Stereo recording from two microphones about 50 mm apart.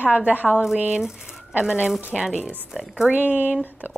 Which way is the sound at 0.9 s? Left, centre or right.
Centre.